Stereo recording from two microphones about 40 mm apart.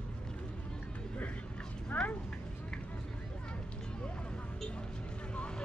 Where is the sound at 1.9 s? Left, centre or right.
Left.